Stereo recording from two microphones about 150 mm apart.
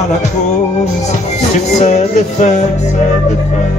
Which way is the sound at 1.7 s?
50° left (ahead or behind).